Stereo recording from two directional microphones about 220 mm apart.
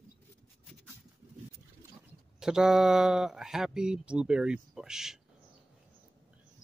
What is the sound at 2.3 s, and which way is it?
Speech, 5° right (ahead or behind).